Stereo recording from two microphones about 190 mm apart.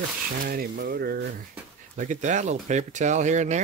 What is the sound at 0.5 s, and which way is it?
Speech, 55° right (ahead or behind).